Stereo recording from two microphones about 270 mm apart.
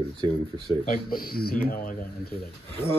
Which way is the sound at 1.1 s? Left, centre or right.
Left.